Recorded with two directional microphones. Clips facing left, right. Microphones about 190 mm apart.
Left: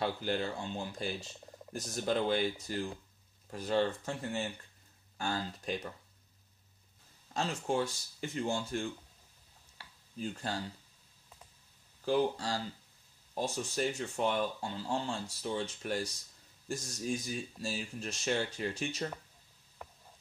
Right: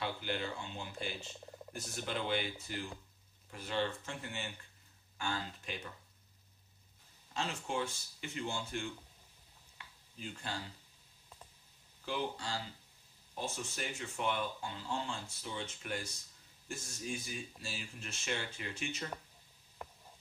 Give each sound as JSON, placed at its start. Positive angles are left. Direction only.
{"t": 0.0, "sound": "speech", "side_deg": 40}
{"t": 7.3, "sound": "speech", "side_deg": 40}
{"t": 9.8, "sound": "a sound", "side_deg": 40}
{"t": 12.0, "sound": "speech", "side_deg": 40}